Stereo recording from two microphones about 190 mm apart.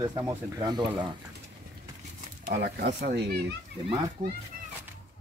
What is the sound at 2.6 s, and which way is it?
Speech, 60° right (ahead or behind).